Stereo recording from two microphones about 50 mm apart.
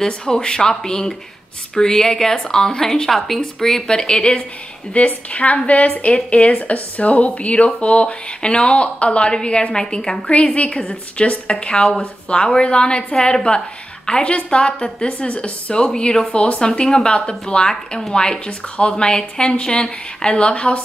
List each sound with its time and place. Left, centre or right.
0.0 s a woman's voice: centre
10.3 s a woman's voice: left